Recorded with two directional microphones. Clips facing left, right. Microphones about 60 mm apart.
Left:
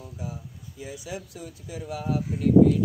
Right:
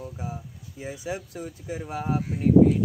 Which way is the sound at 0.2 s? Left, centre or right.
Right.